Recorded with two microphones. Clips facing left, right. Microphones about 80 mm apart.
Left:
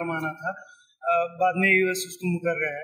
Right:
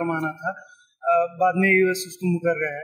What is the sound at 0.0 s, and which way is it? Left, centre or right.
Speech, centre.